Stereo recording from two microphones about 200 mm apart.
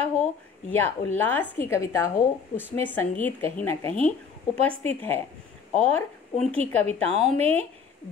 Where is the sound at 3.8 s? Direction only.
30° right (ahead or behind).